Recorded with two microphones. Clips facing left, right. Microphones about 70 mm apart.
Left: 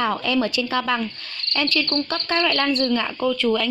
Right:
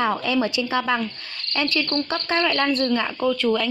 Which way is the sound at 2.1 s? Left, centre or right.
Right.